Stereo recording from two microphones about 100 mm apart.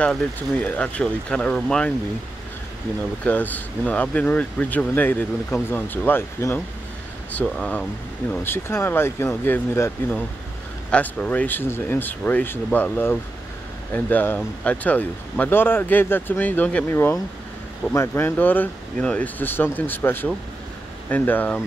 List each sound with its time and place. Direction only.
0.0 s speech: 10° left (ahead or behind)
3.3 s speech: 15° left (ahead or behind)
7.4 s speech: 5° left (ahead or behind)
8.5 s speech: 25° left (ahead or behind)